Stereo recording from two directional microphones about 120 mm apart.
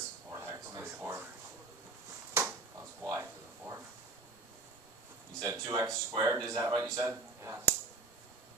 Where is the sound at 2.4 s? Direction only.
20° right (ahead or behind).